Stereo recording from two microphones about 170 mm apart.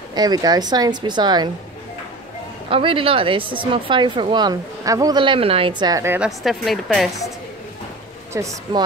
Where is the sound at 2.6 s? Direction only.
30° right (ahead or behind).